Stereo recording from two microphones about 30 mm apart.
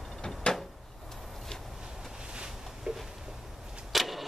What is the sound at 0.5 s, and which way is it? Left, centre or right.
Door, left.